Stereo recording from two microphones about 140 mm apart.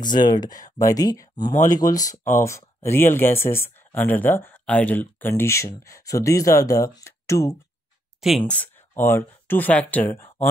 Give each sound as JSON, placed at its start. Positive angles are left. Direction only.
{"t": 0.0, "sound": "speech", "side_deg": 30}
{"t": 8.2, "sound": "speech", "side_deg": -5}
{"t": 8.5, "sound": "speech", "side_deg": 10}